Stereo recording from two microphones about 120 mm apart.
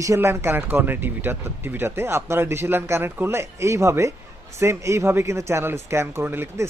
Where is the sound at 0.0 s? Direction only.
25° right (ahead or behind).